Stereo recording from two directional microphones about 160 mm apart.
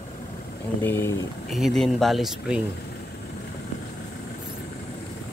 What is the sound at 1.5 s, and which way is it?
Speech, centre (ahead or behind).